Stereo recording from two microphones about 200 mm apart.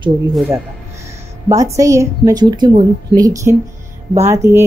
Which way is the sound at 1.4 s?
15° right (ahead or behind).